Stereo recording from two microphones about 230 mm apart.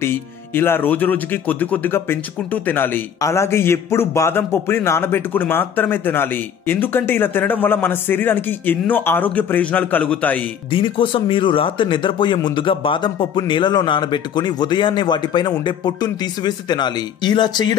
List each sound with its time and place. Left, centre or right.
0.0 s speech: centre
10.7 s a man's voice: left